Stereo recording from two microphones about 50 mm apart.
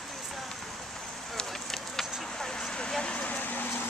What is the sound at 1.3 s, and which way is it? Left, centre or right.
Vehicle, centre.